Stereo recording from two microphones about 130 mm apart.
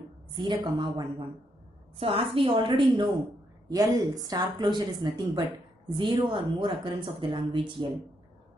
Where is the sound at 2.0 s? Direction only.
45° right (ahead or behind).